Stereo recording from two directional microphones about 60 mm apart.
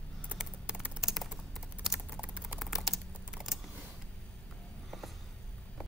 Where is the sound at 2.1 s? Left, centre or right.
Right.